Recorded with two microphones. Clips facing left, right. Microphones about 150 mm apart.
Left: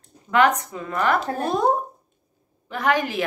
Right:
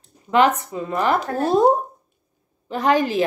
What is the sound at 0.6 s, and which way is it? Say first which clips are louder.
Speech: right 2 dB; 25° right (ahead or behind).